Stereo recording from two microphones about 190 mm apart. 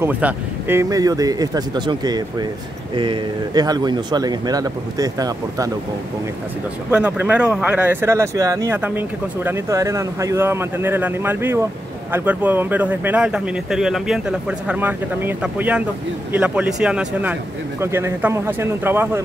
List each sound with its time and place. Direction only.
0.0 s a man's voice: 10° right (ahead or behind)
6.9 s speech: 10° right (ahead or behind)